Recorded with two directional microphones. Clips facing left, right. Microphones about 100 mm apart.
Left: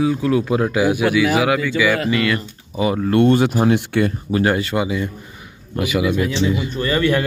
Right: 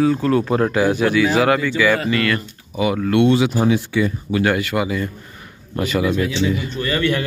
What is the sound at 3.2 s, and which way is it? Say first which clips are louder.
Speech: left 1 dB; 50° left (ahead or behind).